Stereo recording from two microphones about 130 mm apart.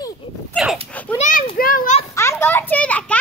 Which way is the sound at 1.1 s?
75° left (ahead or behind).